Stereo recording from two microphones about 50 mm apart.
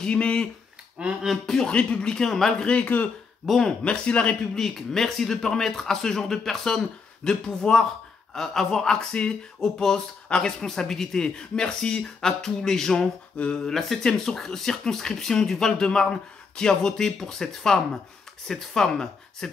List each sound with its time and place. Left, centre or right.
0.0 s a man's voice: centre
1.0 s speech: right
1.4 s speech: centre
1.7 s speech: left
2.6 s a man's voice: left
3.4 s speech: centre
3.8 s a man's voice: left
4.6 s speech: centre